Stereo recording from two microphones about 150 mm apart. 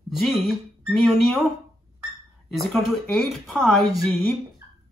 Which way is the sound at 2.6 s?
Centre (ahead or behind).